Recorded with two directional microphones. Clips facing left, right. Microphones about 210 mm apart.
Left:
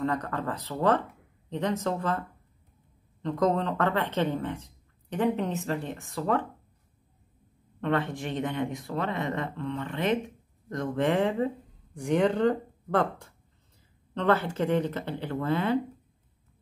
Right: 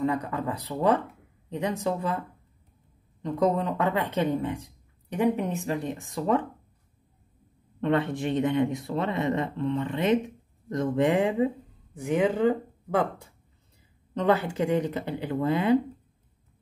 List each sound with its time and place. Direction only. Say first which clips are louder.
0.0 s speech: right 2 dB; 10° right (ahead or behind)
7.8 s speech: right 3 dB; 20° right (ahead or behind)